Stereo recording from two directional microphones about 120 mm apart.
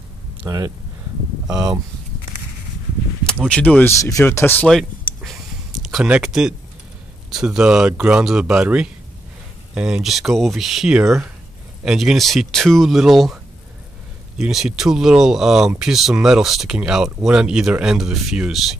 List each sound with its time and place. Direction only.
0.5 s speech: 30° right (ahead or behind)
3.4 s speech: 10° left (ahead or behind)
4.0 s speech: 25° left (ahead or behind)
4.6 s a sound: centre (ahead or behind)
7.2 s speech: 5° right (ahead or behind)
14.4 s speech: 5° right (ahead or behind)